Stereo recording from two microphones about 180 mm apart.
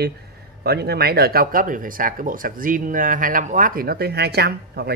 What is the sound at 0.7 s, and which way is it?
Speech, 65° right (ahead or behind).